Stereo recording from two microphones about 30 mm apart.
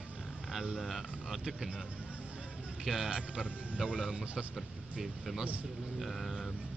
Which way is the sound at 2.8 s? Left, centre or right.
Right.